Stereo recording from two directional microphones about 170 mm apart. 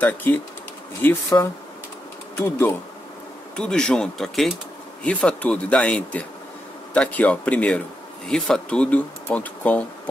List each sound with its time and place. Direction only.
0.0 s speech: 10° left (ahead or behind)